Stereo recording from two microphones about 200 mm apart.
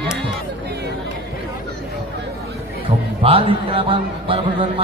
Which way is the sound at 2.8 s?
25° right (ahead or behind).